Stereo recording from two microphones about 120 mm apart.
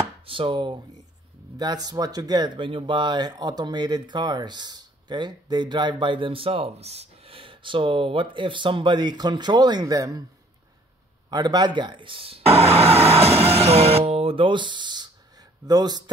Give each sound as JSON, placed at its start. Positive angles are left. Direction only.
{"t": 0.2, "sound": "speech", "side_deg": -45}
{"t": 11.2, "sound": "speech", "side_deg": -35}